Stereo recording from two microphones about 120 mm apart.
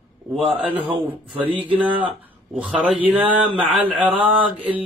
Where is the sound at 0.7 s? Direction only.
50° right (ahead or behind).